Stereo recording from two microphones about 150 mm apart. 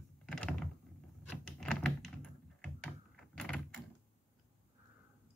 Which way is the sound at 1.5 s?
5° left (ahead or behind).